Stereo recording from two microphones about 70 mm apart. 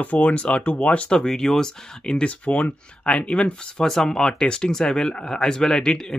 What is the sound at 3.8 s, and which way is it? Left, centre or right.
Speech, centre.